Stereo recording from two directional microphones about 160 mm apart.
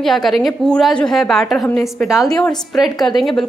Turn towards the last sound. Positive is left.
turn(degrees=0)  # may be behind; listen again after turning